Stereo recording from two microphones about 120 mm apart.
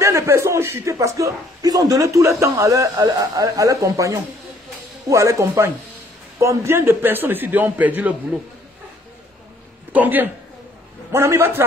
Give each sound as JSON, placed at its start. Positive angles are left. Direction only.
{"t": 0.0, "sound": "a man's voice", "side_deg": -25}
{"t": 9.9, "sound": "a man's voice", "side_deg": -15}